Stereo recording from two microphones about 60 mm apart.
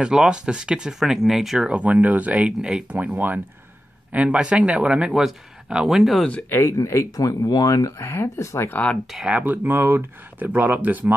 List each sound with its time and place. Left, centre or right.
0.0 s speech: centre
1.7 s speech: right; by 6.2 s centre
6.5 s speech: left
8.0 s speech: left
9.4 s speech: right